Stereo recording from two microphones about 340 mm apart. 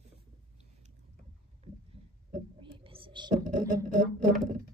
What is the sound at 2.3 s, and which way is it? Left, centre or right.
Whispering, centre.